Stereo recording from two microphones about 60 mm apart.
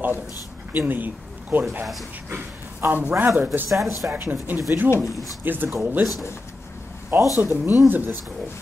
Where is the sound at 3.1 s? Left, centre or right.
Right.